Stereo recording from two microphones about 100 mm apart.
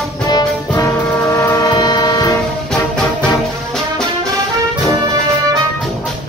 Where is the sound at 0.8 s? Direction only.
30° left (ahead or behind).